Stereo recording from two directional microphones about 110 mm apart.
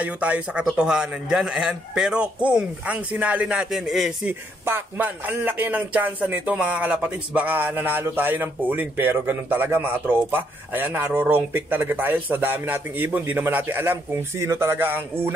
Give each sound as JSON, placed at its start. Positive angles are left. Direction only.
{"t": 0.0, "sound": "speech", "side_deg": -15}
{"t": 3.7, "sound": "a man's voice", "side_deg": 0}
{"t": 4.3, "sound": "speech", "side_deg": -20}